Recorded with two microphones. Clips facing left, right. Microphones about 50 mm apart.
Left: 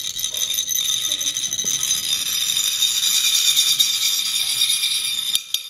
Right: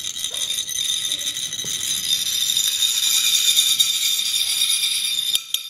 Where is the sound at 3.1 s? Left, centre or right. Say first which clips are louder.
Right 1 dB; right.